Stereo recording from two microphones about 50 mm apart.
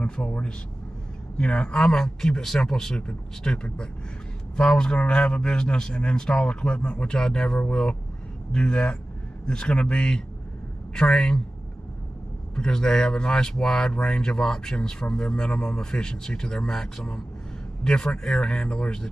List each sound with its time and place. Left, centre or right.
0.0 s a man's voice: left
12.5 s a man's voice: centre